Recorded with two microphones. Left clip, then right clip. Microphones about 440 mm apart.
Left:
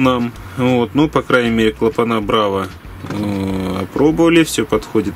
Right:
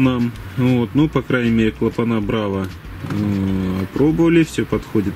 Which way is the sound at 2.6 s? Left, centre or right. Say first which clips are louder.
Left 2 dB; centre.